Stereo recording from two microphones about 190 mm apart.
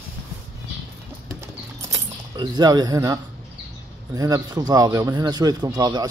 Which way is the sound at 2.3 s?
20° right (ahead or behind).